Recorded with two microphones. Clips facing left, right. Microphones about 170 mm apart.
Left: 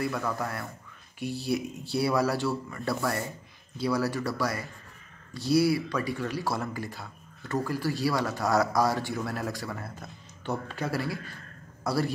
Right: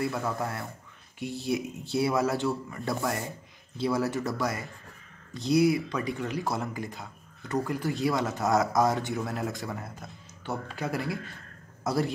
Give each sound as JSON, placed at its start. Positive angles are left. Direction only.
{"t": 0.0, "sound": "a man's voice", "side_deg": -20}